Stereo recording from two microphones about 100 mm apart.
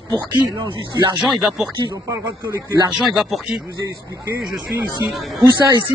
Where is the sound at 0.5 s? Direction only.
40° right (ahead or behind).